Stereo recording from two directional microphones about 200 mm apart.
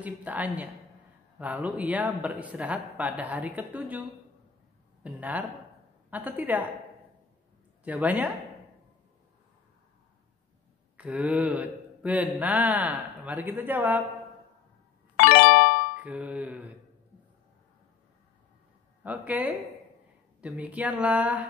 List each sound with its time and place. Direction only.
0.0 s speech: 10° right (ahead or behind)
5.0 s speech: 10° right (ahead or behind)
7.8 s speech: 10° right (ahead or behind)
11.0 s speech: 5° right (ahead or behind)
15.1 s music: 55° left (ahead or behind)
16.0 s speech: 5° right (ahead or behind)
19.0 s speech: 10° right (ahead or behind)